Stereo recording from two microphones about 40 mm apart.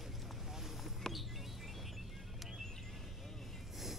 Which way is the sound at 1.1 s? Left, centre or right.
Centre.